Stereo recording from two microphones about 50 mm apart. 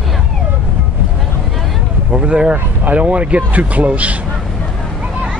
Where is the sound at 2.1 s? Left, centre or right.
Centre.